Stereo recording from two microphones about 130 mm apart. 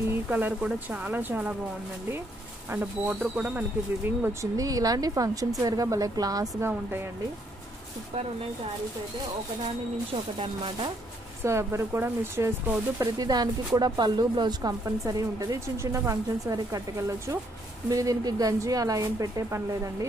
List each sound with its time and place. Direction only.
0.3 s a woman's voice: 15° right (ahead or behind)
2.7 s a woman's voice: 10° right (ahead or behind)
4.2 s speech: 20° right (ahead or behind)
10.1 s speech: 45° right (ahead or behind)
11.4 s speech: 20° right (ahead or behind)
13.0 s speech: 30° right (ahead or behind)